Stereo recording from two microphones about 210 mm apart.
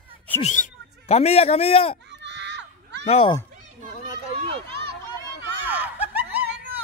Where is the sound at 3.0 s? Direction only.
25° left (ahead or behind).